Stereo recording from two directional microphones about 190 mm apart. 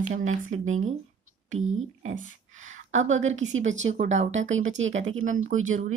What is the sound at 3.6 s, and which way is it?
Speech, 40° right (ahead or behind).